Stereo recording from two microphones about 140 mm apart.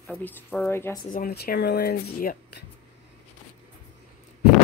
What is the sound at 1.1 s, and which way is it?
Speech, 90° left.